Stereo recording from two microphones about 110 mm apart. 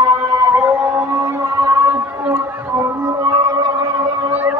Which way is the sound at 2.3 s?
20° right (ahead or behind).